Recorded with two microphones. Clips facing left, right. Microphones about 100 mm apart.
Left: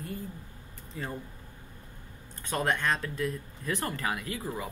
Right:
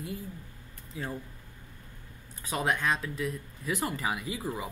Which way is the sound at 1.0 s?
5° right (ahead or behind).